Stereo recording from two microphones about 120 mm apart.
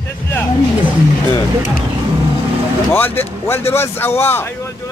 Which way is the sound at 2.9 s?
15° left (ahead or behind).